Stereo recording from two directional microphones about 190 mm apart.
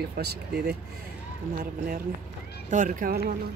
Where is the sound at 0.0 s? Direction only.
55° right (ahead or behind).